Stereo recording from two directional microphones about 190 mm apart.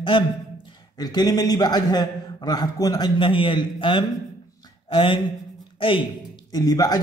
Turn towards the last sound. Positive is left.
turn(degrees=20)  # may be behind; listen again after turning